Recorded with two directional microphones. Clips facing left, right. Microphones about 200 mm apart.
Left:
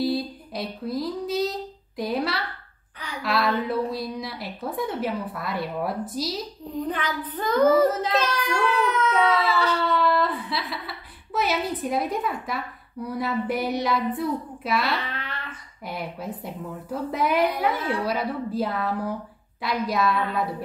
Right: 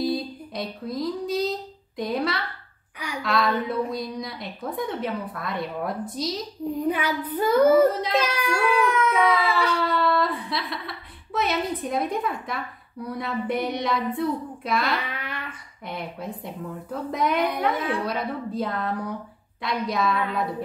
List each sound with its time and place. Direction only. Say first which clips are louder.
0.0 s music: left 1 dB; centre (ahead or behind)
2.0 s a woman's voice: even; 5° left (ahead or behind)
6.9 s a woman's voice: right 4 dB; 10° right (ahead or behind)
15.0 s a sound: right 1 dB; 10° right (ahead or behind)
15.9 s a woman's voice: left 1 dB; 5° left (ahead or behind)